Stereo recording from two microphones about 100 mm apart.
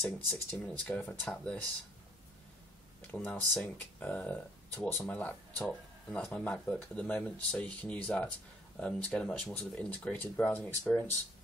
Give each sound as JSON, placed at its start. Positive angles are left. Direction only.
{"t": 0.0, "sound": "speech", "side_deg": 20}
{"t": 3.2, "sound": "speech", "side_deg": 15}